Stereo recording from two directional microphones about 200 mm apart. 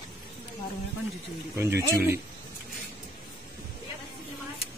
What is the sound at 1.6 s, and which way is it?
Speech, 15° right (ahead or behind).